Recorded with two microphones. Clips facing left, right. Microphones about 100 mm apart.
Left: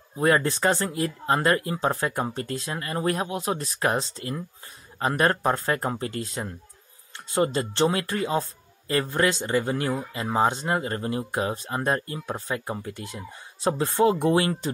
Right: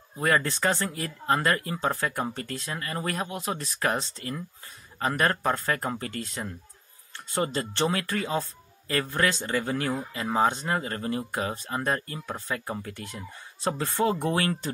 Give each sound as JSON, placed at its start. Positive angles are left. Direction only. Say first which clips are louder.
{"t": 0.2, "sound": "speech", "louder": "left 3 dB", "side_deg": 25}